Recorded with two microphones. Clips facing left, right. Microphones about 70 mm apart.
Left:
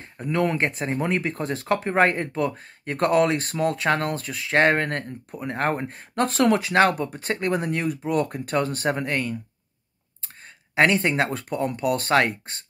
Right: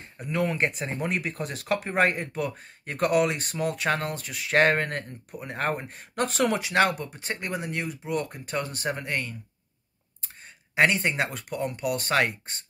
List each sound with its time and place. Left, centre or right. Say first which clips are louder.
0.4 s speech: left 3 dB; left
4.7 s speech: left 3 dB; left
8.9 s speech: left 5 dB; left
10.7 s speech: left 3 dB; left